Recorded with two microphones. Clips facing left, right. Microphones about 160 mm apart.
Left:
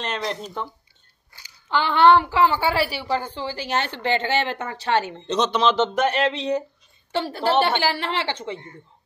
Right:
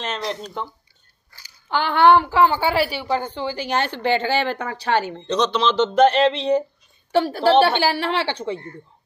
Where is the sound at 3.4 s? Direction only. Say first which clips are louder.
Right 3 dB; 30° left (ahead or behind).